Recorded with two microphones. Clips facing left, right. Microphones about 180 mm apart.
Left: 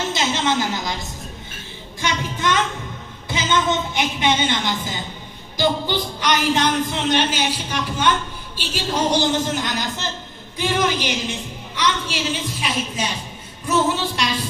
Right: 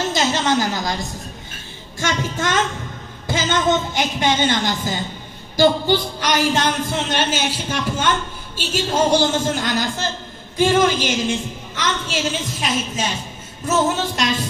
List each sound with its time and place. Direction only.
0.3 s a woman's voice: 45° right (ahead or behind)
2.0 s speech: 45° right (ahead or behind)